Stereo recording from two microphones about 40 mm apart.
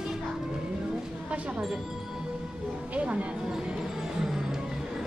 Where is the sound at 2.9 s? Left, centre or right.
Right.